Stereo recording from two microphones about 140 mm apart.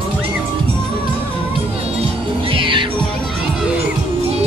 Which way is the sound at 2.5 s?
40° right (ahead or behind).